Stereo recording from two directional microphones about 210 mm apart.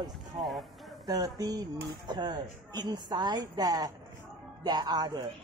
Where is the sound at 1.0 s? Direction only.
20° right (ahead or behind).